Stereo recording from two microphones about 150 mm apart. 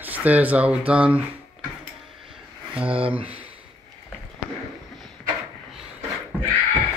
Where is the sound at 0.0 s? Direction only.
10° right (ahead or behind).